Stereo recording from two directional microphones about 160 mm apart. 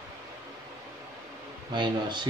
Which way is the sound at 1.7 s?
30° right (ahead or behind).